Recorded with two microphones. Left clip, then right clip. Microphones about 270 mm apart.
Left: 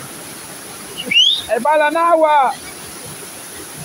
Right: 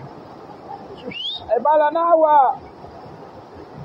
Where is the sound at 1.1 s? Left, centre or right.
Centre.